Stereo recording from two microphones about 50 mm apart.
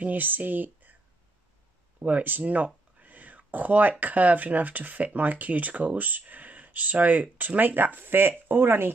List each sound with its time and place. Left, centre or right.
0.0 s speech: right
2.0 s a sound: right
4.0 s speech: right